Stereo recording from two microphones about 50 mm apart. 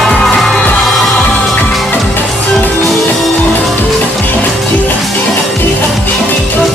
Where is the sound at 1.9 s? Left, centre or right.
Left.